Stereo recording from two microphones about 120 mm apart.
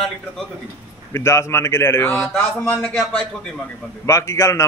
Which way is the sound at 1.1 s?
25° left (ahead or behind).